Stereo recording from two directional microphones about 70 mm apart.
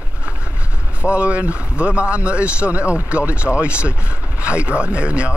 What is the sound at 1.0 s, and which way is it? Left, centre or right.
Speech, centre.